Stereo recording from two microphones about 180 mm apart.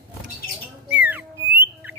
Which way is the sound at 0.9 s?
10° right (ahead or behind).